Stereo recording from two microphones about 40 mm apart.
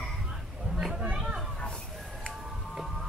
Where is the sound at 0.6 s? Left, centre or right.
Centre.